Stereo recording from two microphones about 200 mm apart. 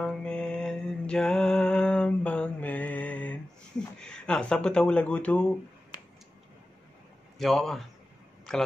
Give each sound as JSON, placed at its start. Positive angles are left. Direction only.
{"t": 0.0, "sound": "mantra", "side_deg": 5}
{"t": 4.0, "sound": "speech", "side_deg": 5}
{"t": 7.3, "sound": "a man's voice", "side_deg": 0}